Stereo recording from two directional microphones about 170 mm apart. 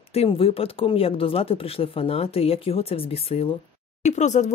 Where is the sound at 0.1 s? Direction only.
35° left (ahead or behind).